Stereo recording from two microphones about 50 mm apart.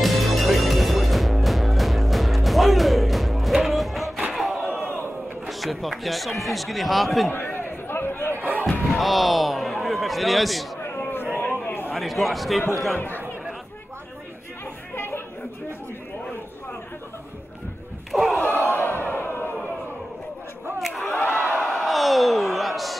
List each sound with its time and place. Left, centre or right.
0.0 s music: centre
4.2 s crowd: centre
5.5 s speech: centre
7.2 s chatter: left
8.9 s a man's voice: centre
10.8 s a sound: left
11.9 s speech: centre
15.0 s chatter: left
18.1 s a sound: centre
18.6 s crowd: left
20.8 s battle cry: centre
21.5 s crowd: centre